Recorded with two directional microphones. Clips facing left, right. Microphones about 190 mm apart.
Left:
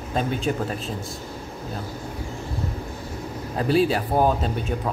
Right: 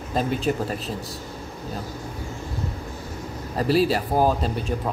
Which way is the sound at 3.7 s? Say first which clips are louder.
Even; centre (ahead or behind).